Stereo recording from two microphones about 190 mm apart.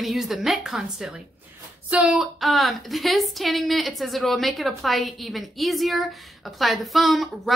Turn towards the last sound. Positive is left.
turn(degrees=0)  # may be behind; listen again after turning